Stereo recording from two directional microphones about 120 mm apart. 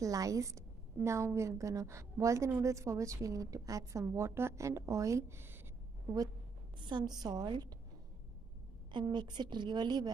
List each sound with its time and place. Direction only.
0.0 s a woman's voice: 30° right (ahead or behind)
6.8 s a woman's voice: 40° right (ahead or behind)
8.9 s a woman's voice: 40° right (ahead or behind)